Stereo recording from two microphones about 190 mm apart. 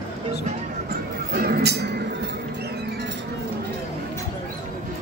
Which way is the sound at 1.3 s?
50° right (ahead or behind).